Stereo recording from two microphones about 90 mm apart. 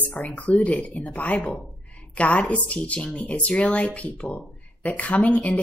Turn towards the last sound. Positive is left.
turn(degrees=15)  # may be behind; listen again after turning